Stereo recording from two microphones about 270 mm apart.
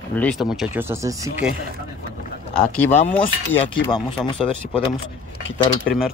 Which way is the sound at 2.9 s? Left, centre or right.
Left.